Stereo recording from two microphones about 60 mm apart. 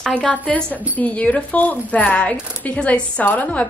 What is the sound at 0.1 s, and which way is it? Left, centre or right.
A woman's voice, left.